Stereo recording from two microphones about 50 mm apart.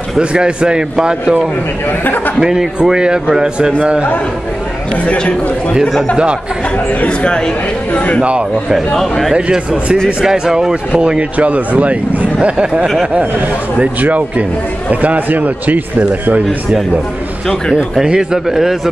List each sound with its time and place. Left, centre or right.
0.2 s a man's voice: right
1.9 s speech: left
2.4 s a man's voice: centre
5.0 s a man's voice: left
6.9 s speech: left
7.2 s speech: centre
7.9 s a man's voice: left
8.2 s speech: right
8.9 s a man's voice: centre
9.3 s a man's voice: centre
14.0 s a man's voice: right
17.7 s a man's voice: centre